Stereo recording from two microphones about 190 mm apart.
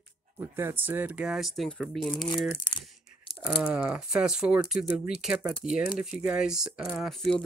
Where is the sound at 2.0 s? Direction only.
25° left (ahead or behind).